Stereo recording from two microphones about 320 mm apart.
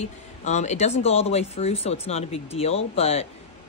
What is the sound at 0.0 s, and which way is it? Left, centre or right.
A woman's voice, left.